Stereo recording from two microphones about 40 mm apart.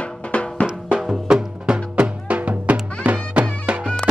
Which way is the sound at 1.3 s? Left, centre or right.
Centre.